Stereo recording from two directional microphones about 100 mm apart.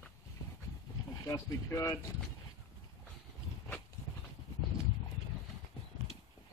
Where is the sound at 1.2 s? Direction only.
30° left (ahead or behind).